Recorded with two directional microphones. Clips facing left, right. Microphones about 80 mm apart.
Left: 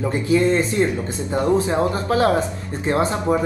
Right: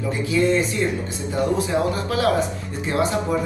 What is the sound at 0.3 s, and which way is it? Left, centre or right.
Speech, left.